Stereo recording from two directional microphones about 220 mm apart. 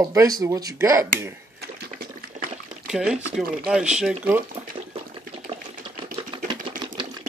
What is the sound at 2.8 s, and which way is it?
Speech, 5° right (ahead or behind).